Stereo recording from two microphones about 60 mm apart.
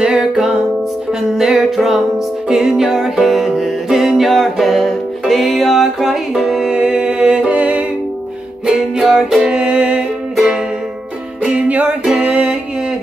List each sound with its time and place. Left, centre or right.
0.0 s music: centre
6.7 s music: centre
9.6 s music: centre
11.4 s music: right